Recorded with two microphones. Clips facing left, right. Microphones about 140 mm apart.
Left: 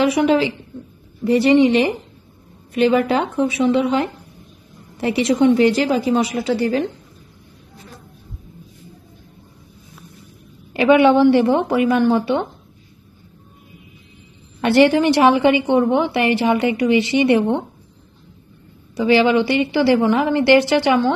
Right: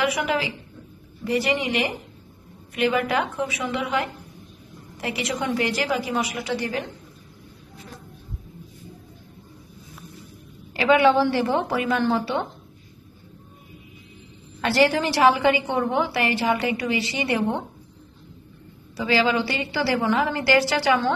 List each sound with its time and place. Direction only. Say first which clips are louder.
0.0 s a woman's voice: left 8 dB; 25° left (ahead or behind)
10.7 s a woman's voice: left 5 dB; 20° left (ahead or behind)
14.6 s a woman's voice: left 7 dB; 20° left (ahead or behind)
18.9 s a woman's voice: left 7 dB; 20° left (ahead or behind)